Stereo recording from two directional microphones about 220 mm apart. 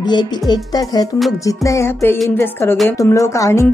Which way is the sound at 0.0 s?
20° left (ahead or behind).